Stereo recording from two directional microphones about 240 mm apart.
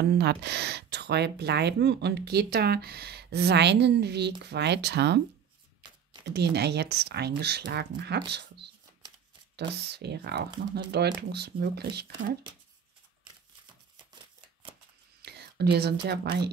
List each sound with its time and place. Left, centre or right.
0.0 s speech: right
6.2 s speech: right
14.1 s shuffling cards: right
15.2 s speech: right